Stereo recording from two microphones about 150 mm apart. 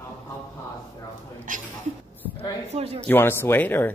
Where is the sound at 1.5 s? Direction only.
60° right (ahead or behind).